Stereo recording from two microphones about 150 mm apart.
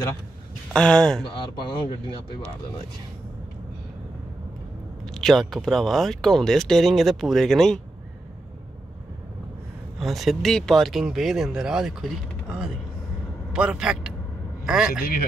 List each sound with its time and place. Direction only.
0.7 s speech: 5° left (ahead or behind)
1.3 s speech: 30° left (ahead or behind)
5.1 s speech: centre (ahead or behind)
9.9 s speech: centre (ahead or behind)
13.5 s vehicle: 5° right (ahead or behind)
14.7 s a man's voice: 5° right (ahead or behind)